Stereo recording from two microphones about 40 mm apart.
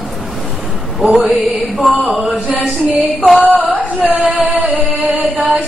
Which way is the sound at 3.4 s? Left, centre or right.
Right.